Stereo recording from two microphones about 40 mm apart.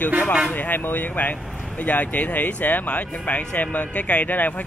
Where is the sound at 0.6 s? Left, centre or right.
Left.